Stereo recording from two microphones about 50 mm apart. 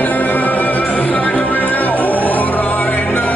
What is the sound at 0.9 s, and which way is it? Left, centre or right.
Music, centre.